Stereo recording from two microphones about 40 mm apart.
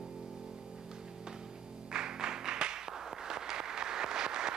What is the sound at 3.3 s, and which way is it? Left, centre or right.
Applause, centre.